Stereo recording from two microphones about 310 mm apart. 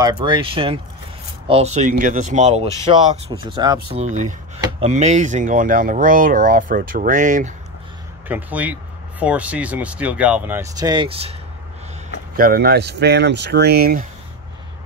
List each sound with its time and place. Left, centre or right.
0.2 s speech: centre
8.3 s speech: centre
12.4 s speech: right